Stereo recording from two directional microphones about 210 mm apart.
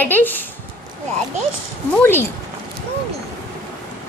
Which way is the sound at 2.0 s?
10° left (ahead or behind).